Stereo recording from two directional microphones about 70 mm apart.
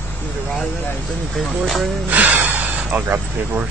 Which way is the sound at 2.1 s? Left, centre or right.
Right.